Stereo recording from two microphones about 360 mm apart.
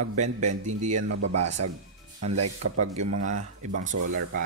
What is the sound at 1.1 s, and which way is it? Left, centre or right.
Speech, right.